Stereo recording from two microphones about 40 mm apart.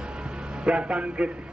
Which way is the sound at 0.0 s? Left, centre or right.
Right.